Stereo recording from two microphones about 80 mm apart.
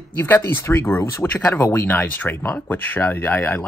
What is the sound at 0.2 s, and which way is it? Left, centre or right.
Speech, left.